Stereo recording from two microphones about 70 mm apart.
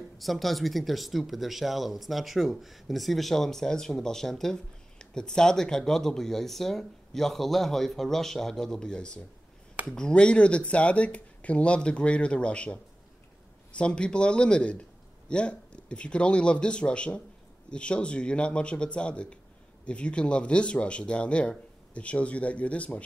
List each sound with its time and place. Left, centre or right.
0.2 s a man's voice: centre